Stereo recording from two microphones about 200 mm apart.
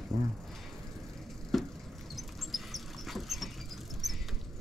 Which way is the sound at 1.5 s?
Centre (ahead or behind).